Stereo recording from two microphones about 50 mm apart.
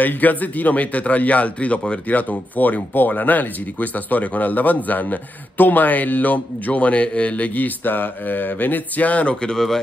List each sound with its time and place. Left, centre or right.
0.0 s a man's voice: left; by 9.8 s centre